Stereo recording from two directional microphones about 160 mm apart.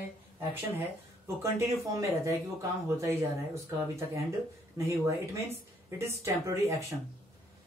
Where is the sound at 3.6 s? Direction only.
20° right (ahead or behind).